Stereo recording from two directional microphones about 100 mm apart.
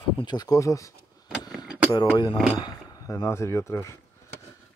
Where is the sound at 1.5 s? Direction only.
5° right (ahead or behind).